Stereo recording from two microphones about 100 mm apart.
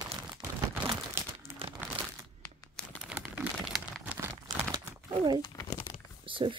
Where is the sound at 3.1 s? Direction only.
10° right (ahead or behind).